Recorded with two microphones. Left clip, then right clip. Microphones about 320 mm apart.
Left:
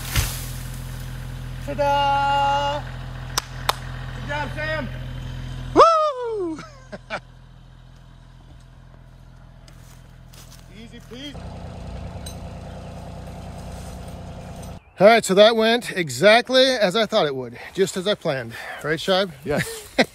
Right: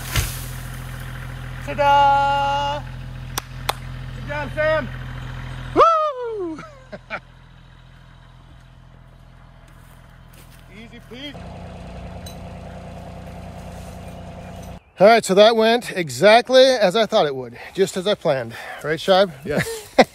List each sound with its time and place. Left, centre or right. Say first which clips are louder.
0.2 s vehicle: right 1 dB; centre
4.3 s vehicle: right 6 dB; centre
5.8 s a sound: left 1 dB; centre
10.7 s vehicle: right 2 dB; right
14.0 s vehicle: right 1 dB; right
15.0 s speech: right 1 dB; centre